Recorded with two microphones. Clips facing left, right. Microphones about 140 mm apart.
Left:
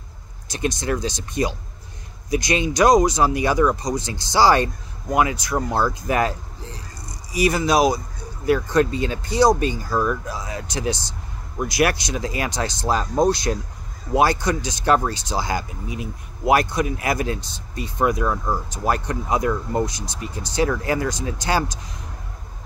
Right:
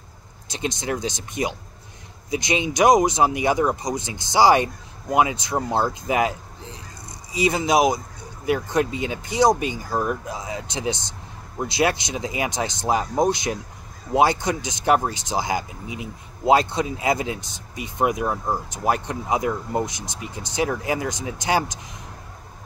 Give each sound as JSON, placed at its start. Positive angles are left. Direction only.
{"t": 0.5, "sound": "speech", "side_deg": -20}